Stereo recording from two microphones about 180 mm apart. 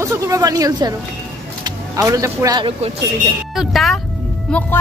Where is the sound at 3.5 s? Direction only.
Centre (ahead or behind).